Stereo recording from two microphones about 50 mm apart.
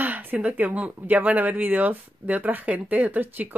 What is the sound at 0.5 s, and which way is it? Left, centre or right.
Speech, right.